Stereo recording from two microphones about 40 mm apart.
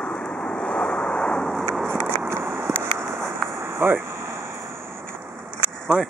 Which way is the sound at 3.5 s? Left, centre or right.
Right.